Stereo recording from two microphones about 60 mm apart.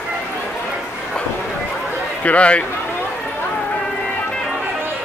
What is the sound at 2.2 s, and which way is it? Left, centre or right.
Speech, left.